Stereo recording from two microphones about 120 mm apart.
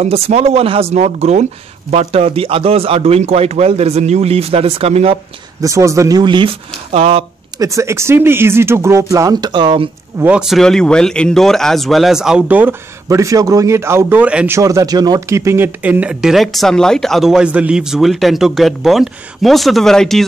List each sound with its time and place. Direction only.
0.0 s a man's voice: 60° right (ahead or behind)
5.6 s speech: 25° right (ahead or behind)
6.2 s speech: 40° right (ahead or behind)
6.9 s a man's voice: 55° right (ahead or behind)
7.5 s speech: 25° right (ahead or behind)
10.1 s speech: 15° right (ahead or behind)
10.4 s speech: centre (ahead or behind)
13.1 s speech: 30° right (ahead or behind); by 14.6 s 10° right (ahead or behind)
14.6 s speech: 30° right (ahead or behind); by 20.2 s 5° left (ahead or behind)